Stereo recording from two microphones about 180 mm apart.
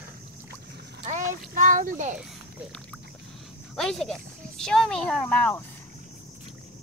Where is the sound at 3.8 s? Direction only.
Centre (ahead or behind).